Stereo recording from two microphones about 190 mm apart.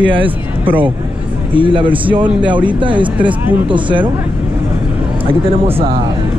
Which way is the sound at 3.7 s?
25° right (ahead or behind).